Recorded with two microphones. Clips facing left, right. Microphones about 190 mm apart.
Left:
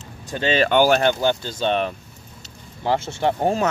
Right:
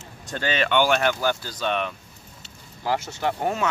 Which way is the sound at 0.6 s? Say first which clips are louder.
Left 4 dB; 40° left (ahead or behind).